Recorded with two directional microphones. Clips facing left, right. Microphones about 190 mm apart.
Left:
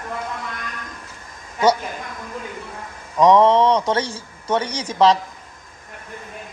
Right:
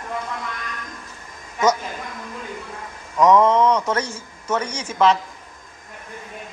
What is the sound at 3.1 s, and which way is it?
A man's voice, 30° left (ahead or behind).